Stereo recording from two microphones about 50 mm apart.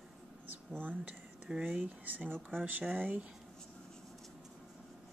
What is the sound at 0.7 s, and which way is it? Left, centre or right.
Speech, right.